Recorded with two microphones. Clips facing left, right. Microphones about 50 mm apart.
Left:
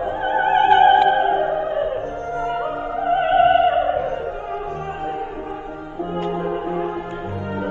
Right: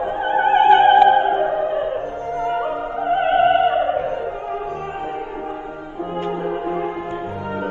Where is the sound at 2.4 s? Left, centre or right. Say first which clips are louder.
Right 2 dB; right.